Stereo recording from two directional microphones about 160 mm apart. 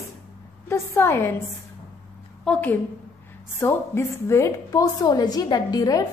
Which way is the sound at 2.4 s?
10° left (ahead or behind).